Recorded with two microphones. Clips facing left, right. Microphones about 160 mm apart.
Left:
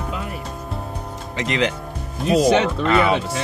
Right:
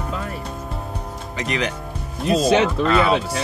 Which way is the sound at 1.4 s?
25° left (ahead or behind).